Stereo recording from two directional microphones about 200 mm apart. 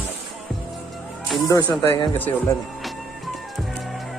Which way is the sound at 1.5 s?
20° left (ahead or behind).